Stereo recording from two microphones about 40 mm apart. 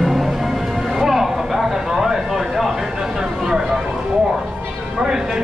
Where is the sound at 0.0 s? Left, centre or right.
Centre.